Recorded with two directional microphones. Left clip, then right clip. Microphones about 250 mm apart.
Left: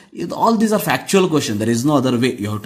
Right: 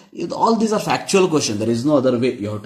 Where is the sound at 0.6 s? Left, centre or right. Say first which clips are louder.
Left 1 dB; left.